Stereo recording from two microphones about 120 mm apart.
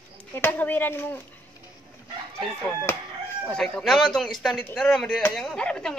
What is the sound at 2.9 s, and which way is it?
Speech, 20° left (ahead or behind).